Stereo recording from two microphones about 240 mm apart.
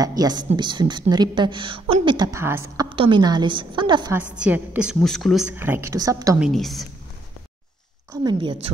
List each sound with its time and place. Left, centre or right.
0.0 s a woman's voice: centre
4.4 s a woman's voice: centre
6.4 s a woman's voice: centre
8.1 s a woman's voice: centre